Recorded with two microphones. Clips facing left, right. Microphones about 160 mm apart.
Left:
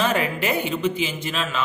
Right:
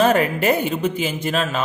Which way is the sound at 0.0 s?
45° right (ahead or behind).